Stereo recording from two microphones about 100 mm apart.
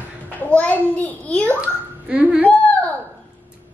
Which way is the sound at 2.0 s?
15° right (ahead or behind).